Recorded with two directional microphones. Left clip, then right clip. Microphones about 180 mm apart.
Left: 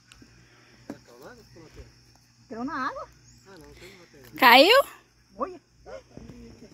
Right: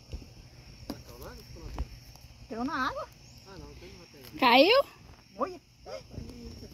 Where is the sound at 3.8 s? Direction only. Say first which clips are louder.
Left 1 dB; centre (ahead or behind).